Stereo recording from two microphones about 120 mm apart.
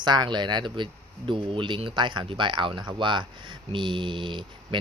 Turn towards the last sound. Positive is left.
turn(degrees=-40)  # may be behind; listen again after turning